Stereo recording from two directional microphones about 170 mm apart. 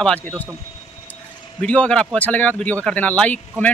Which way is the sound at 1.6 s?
5° left (ahead or behind).